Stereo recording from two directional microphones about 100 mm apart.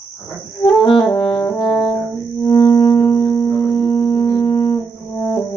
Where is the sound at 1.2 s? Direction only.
25° left (ahead or behind).